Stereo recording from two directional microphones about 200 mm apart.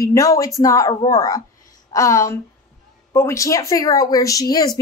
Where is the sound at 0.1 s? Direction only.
15° left (ahead or behind).